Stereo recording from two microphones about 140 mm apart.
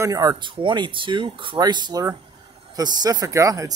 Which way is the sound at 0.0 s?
25° right (ahead or behind).